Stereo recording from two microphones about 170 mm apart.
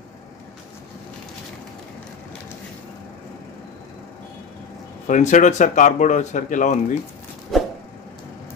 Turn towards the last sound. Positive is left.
turn(degrees=0)  # may be behind; listen again after turning